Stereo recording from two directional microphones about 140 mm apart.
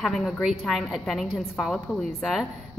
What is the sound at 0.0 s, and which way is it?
A woman's voice, centre (ahead or behind).